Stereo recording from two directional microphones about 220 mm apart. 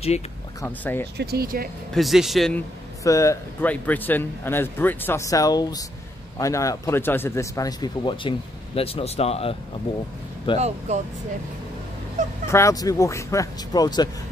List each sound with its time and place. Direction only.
0.6 s a man's voice: 10° left (ahead or behind)
1.1 s speech: 45° right (ahead or behind)
2.0 s speech: centre (ahead or behind)
3.0 s a man's voice: 15° left (ahead or behind)
10.9 s speech: 30° right (ahead or behind)
12.4 s a man's voice: 15° left (ahead or behind)